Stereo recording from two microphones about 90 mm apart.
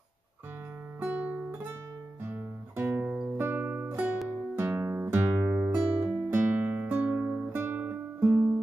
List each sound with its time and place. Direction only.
1.0 s guitar: 15° right (ahead or behind)
3.3 s music: 25° right (ahead or behind); by 7.4 s 10° right (ahead or behind)
7.5 s guitar: 20° right (ahead or behind)